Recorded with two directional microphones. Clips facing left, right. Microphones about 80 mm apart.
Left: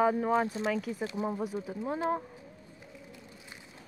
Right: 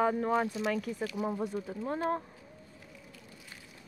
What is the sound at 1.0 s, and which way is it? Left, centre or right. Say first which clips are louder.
Speech: even; left.